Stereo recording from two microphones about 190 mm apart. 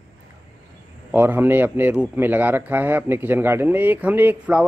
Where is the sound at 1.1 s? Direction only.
10° right (ahead or behind).